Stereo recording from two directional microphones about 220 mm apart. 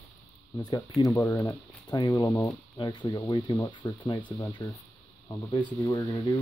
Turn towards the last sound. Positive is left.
turn(degrees=15)  # may be behind; listen again after turning